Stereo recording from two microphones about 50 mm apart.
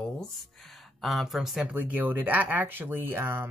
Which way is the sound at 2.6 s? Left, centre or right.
Right.